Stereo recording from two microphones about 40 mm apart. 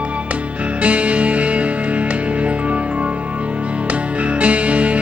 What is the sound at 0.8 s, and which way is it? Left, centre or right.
Music, right.